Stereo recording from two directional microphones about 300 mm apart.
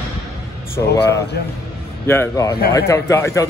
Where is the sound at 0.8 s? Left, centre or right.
Centre.